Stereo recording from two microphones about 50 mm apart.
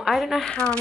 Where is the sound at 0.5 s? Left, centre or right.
Centre.